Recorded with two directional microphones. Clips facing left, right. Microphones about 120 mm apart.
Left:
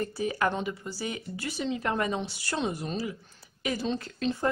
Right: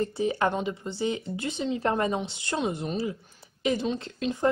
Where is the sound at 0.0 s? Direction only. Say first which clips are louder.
Right 3 dB; 25° right (ahead or behind).